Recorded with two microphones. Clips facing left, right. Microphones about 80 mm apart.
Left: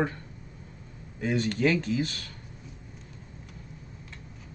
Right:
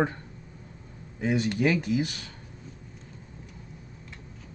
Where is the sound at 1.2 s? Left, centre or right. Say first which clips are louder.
Right 1 dB; centre.